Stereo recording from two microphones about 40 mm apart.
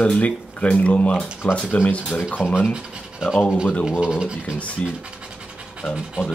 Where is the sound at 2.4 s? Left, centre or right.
Left.